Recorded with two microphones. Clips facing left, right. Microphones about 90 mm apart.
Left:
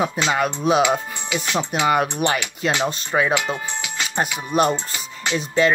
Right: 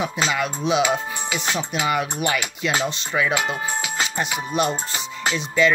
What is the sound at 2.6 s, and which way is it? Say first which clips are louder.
Speech: left 3 dB; 40° left (ahead or behind).